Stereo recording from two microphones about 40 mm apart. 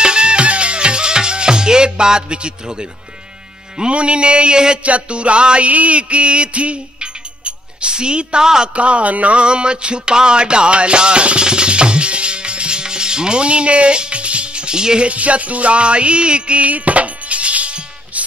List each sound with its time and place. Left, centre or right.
0.0 s music: right
3.7 s mantra: right
4.8 s music: right
8.7 s a sound: right
15.0 s music: right